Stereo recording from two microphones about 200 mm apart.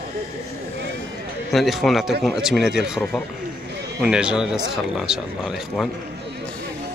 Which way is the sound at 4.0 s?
5° right (ahead or behind).